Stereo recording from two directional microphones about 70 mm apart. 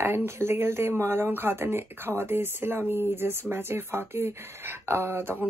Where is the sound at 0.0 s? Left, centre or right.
Right.